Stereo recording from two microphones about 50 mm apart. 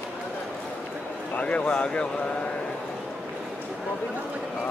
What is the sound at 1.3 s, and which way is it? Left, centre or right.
Speech, left.